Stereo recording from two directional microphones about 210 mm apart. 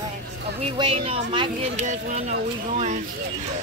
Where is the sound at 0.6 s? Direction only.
25° right (ahead or behind).